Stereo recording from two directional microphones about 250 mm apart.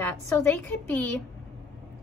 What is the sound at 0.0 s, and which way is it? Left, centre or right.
A woman's voice, centre.